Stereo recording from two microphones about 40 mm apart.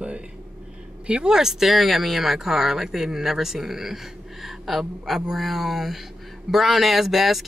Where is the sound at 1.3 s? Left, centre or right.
Centre.